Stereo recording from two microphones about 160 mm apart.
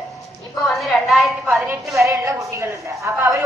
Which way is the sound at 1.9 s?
20° right (ahead or behind).